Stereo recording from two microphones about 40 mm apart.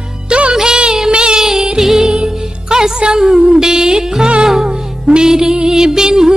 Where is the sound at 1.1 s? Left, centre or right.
Right.